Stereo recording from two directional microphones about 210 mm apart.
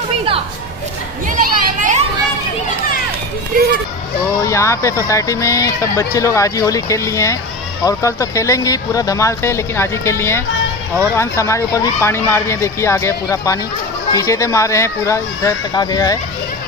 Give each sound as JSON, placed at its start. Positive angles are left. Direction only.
{"t": 1.4, "sound": "a child's voice", "side_deg": -40}
{"t": 4.4, "sound": "speech", "side_deg": 15}